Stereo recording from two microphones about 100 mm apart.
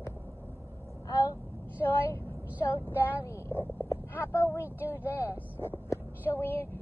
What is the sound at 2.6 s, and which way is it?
A woman's voice, 25° left (ahead or behind).